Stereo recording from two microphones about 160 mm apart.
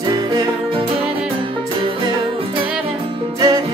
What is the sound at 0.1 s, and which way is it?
Music, 30° right (ahead or behind).